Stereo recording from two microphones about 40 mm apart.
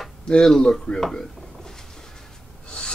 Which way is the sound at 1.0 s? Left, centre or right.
Centre.